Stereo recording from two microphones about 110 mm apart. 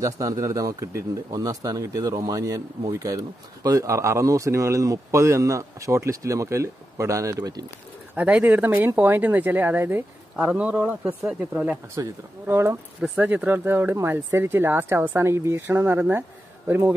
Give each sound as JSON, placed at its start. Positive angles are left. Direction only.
{"t": 0.0, "sound": "speech", "side_deg": -30}
{"t": 8.2, "sound": "speech", "side_deg": -15}
{"t": 11.9, "sound": "speech", "side_deg": -25}